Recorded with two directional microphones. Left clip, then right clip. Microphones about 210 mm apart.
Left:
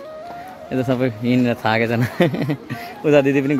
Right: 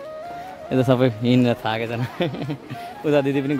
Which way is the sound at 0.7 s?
20° right (ahead or behind).